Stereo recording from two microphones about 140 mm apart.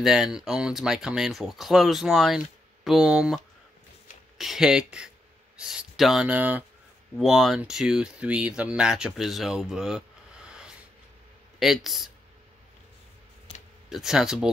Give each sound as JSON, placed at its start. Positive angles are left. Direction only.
{"t": 0.0, "sound": "speech", "side_deg": -5}
{"t": 4.4, "sound": "speech", "side_deg": -5}
{"t": 7.2, "sound": "speech", "side_deg": 0}
{"t": 13.5, "sound": "computer keyboard", "side_deg": 45}
{"t": 13.8, "sound": "speech", "side_deg": -5}